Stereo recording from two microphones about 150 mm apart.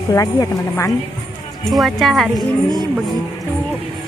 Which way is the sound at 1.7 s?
Centre (ahead or behind).